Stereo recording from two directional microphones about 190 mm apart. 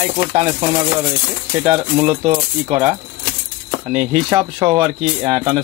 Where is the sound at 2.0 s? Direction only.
35° right (ahead or behind).